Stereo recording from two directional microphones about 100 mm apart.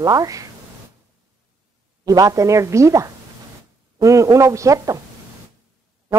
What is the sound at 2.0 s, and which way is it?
A woman's voice, 35° right (ahead or behind).